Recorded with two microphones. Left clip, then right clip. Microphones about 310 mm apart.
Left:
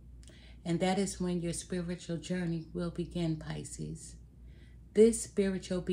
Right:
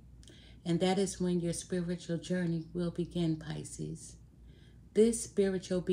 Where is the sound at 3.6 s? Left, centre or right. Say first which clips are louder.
Right 1 dB; left.